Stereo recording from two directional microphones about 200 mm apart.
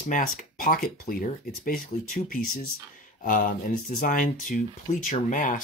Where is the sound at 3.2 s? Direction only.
40° left (ahead or behind).